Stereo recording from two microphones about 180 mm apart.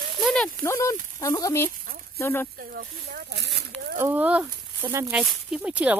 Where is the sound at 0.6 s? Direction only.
15° left (ahead or behind).